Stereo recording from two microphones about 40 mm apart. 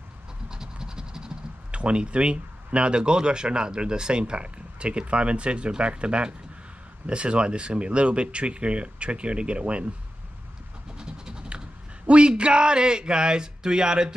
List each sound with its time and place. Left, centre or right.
0.5 s scratch: centre
1.8 s speech: right
11.0 s a sound: centre
12.1 s speech: right